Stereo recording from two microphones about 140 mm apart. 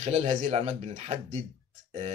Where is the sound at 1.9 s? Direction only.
55° right (ahead or behind).